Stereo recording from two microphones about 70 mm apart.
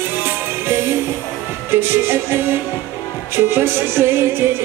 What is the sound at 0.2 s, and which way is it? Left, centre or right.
Music, right.